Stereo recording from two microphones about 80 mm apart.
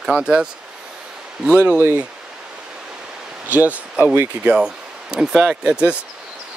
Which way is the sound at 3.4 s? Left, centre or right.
Centre.